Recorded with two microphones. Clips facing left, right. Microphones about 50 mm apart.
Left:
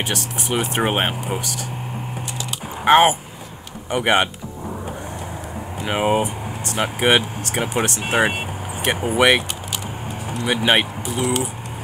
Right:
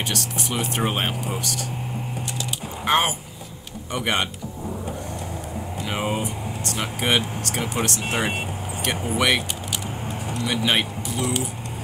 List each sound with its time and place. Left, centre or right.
0.1 s speech: centre
1.2 s speech: centre
2.8 s speech: left
5.9 s speech: left
10.4 s speech: left